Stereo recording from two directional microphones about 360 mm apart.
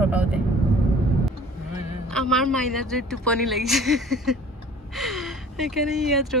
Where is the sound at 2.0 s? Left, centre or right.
Centre.